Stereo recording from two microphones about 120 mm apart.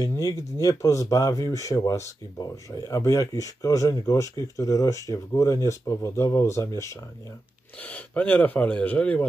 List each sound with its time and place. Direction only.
0.0 s speech: 30° left (ahead or behind)
7.8 s speech: 10° left (ahead or behind)